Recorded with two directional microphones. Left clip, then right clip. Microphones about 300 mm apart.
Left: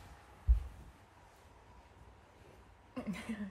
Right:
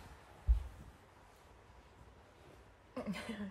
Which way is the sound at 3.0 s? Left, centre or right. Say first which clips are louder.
Even; right.